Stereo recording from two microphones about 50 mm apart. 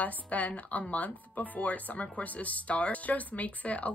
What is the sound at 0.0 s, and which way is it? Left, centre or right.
A woman's voice, left.